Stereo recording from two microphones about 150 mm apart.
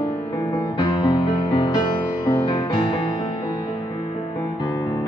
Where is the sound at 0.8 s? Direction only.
30° left (ahead or behind).